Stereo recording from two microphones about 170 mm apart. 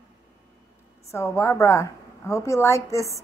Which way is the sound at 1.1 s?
15° left (ahead or behind).